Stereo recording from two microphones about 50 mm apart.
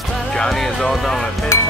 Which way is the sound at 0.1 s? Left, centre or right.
Centre.